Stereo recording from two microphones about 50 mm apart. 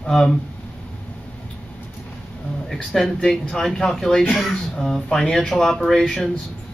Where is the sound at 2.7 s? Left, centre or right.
Centre.